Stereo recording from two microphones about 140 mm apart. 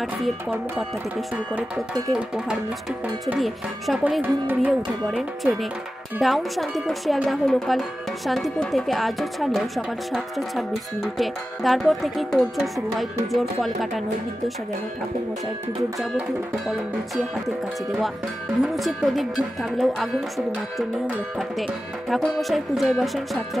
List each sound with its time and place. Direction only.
0.0 s speech: 5° right (ahead or behind)
1.3 s music: 10° right (ahead or behind)
3.3 s speech: centre (ahead or behind)
4.2 s music: 10° right (ahead or behind)
5.4 s speech: centre (ahead or behind)
16.0 s speech: centre (ahead or behind)
18.6 s speech: centre (ahead or behind)
22.1 s speech: centre (ahead or behind)